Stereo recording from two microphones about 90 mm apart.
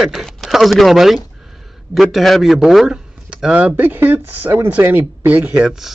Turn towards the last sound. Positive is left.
turn(degrees=-5)  # may be behind; listen again after turning